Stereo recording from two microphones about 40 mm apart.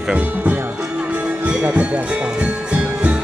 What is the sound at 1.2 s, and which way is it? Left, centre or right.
Music, right.